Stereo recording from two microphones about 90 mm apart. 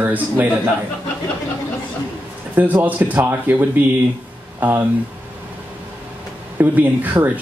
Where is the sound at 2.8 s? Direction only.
20° right (ahead or behind).